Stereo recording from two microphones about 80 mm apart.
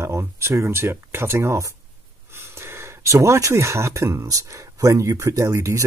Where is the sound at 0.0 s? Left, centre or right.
Right.